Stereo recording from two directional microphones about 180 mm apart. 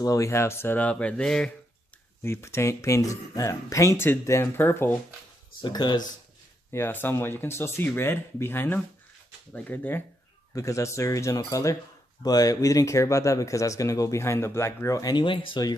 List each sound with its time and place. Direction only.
0.0 s speech: 20° left (ahead or behind)
2.2 s speech: 15° left (ahead or behind)
5.6 s speech: 25° left (ahead or behind)
6.7 s speech: 10° left (ahead or behind)